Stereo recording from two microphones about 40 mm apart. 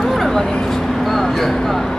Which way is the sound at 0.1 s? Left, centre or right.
Centre.